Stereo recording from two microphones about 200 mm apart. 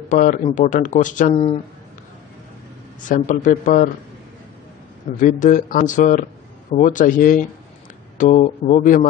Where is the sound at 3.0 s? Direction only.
40° left (ahead or behind).